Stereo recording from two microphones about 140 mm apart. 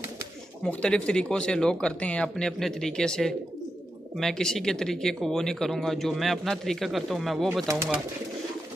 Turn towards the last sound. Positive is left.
turn(degrees=-20)  # may be behind; listen again after turning